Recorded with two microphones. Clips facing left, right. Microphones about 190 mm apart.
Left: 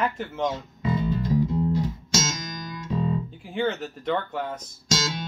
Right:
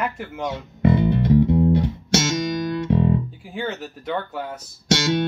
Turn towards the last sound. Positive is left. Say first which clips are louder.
# right 8 dB
turn(degrees=-65)  # may be behind; listen again after turning